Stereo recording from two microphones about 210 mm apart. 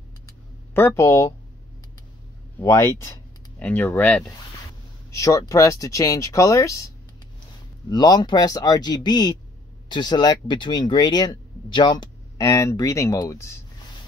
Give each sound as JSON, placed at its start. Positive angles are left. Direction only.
{"t": 0.7, "sound": "speech", "side_deg": 10}
{"t": 2.6, "sound": "speech", "side_deg": 15}
{"t": 7.9, "sound": "speech", "side_deg": 20}